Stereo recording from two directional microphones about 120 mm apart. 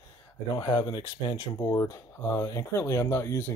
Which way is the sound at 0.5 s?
50° left (ahead or behind).